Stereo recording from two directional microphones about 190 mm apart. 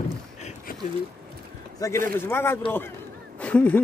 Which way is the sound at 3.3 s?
5° left (ahead or behind).